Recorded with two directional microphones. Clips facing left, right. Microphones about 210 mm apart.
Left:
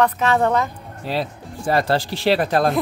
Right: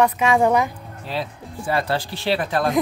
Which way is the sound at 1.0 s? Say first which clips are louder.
Left 4 dB; 40° left (ahead or behind).